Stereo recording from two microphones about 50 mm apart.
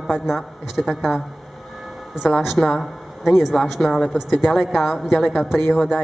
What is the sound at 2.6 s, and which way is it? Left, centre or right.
Speech, left.